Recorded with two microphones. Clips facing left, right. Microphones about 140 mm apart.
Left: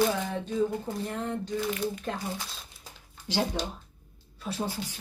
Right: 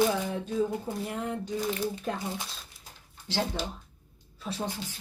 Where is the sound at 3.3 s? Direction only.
15° left (ahead or behind).